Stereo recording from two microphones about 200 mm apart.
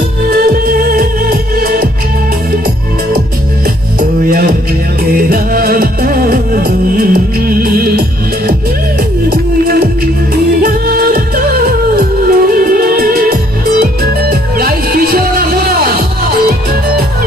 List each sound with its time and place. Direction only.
0.2 s music: 50° right (ahead or behind)
4.0 s music: 50° right (ahead or behind)
9.3 s music: 50° right (ahead or behind)